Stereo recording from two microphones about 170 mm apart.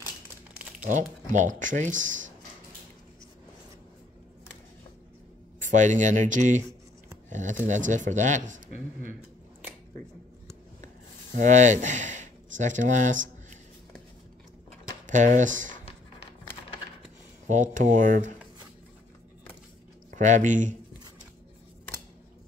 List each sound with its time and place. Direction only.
0.8 s speech: 45° right (ahead or behind)
5.6 s speech: 45° right (ahead or behind)
11.3 s speech: 45° right (ahead or behind)
15.0 s speech: 45° right (ahead or behind)
17.5 s speech: 50° right (ahead or behind)
20.1 s speech: 45° right (ahead or behind)